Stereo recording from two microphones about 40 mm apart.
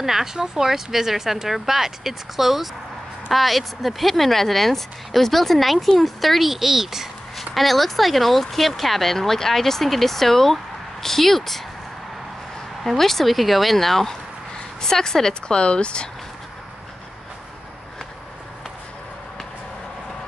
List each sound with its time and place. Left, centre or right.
0.0 s speech: centre
7.3 s speech: centre
12.8 s speech: centre; by 16.1 s left